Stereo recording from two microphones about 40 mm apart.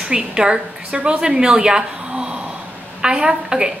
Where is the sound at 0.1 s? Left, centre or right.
Right.